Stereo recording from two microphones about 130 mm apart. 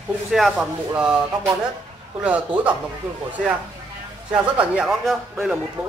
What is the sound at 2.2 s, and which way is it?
Speech, 10° right (ahead or behind).